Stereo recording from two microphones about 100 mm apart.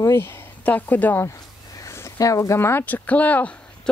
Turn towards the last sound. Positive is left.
turn(degrees=15)  # may be behind; listen again after turning